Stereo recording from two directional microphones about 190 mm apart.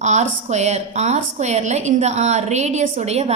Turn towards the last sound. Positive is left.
turn(degrees=-35)  # may be behind; listen again after turning